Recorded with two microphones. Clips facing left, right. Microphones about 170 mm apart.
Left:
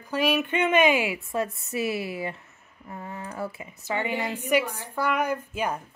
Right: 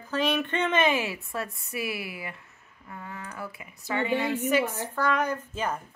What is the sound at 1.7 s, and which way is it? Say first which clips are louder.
A woman's voice: left 5 dB; 25° left (ahead or behind).